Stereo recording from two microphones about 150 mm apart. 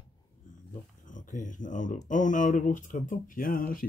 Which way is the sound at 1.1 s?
60° left (ahead or behind).